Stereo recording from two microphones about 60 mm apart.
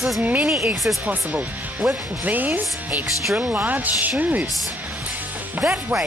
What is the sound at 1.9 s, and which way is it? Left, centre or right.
Speech, right.